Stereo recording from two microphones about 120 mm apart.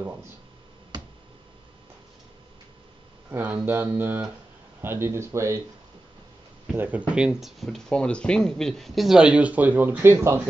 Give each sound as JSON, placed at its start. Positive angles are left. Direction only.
{"t": 3.3, "sound": "speech", "side_deg": -20}
{"t": 6.7, "sound": "speech", "side_deg": -15}